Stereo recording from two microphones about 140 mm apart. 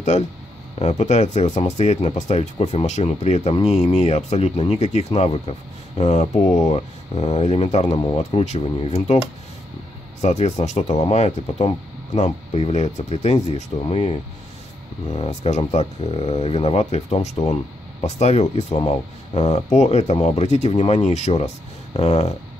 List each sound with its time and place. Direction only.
0.7 s speech: 50° left (ahead or behind)
10.2 s speech: 50° left (ahead or behind)
15.1 s speech: 50° left (ahead or behind)